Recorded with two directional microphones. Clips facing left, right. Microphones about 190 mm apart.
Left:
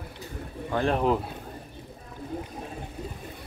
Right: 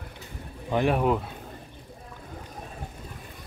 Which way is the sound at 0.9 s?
5° right (ahead or behind).